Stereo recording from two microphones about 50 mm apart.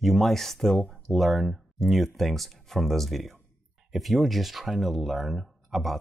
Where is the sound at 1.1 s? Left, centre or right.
Centre.